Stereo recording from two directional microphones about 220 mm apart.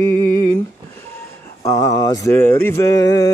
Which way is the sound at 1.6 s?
15° left (ahead or behind).